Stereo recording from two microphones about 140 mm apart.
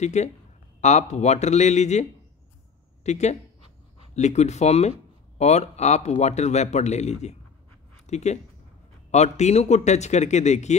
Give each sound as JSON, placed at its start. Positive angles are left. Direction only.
{"t": 0.0, "sound": "a woman's voice", "side_deg": 55}